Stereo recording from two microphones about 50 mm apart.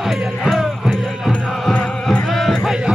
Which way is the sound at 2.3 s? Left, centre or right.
Centre.